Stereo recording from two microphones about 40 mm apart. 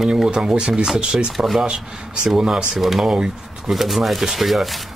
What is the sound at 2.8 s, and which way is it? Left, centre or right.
Speech, centre.